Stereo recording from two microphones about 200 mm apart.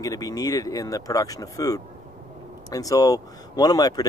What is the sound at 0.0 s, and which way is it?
Speech, 15° left (ahead or behind).